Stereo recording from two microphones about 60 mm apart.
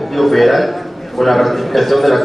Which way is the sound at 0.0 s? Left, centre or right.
Centre.